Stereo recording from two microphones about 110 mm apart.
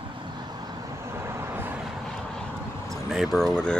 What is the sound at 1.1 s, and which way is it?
Vehicle, 25° right (ahead or behind).